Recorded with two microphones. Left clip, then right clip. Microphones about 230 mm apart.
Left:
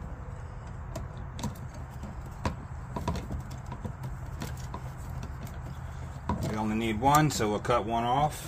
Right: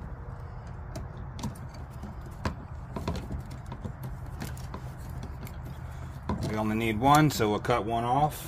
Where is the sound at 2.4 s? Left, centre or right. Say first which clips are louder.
Left 1 dB; centre.